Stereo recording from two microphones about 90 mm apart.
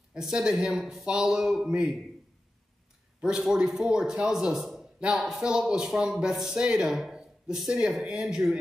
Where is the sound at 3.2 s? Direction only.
10° right (ahead or behind).